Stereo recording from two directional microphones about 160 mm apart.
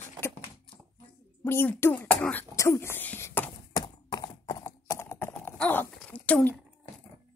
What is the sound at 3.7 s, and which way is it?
Clip-clop, 25° left (ahead or behind).